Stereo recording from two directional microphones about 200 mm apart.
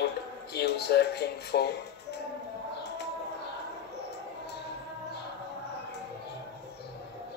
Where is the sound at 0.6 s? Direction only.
55° left (ahead or behind).